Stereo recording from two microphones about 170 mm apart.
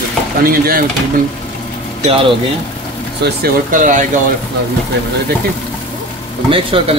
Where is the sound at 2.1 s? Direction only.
30° right (ahead or behind).